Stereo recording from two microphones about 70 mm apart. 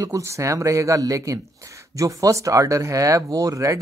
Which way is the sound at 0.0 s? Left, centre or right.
Right.